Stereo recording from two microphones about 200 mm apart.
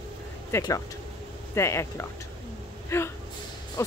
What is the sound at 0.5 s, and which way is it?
Speech, 15° left (ahead or behind).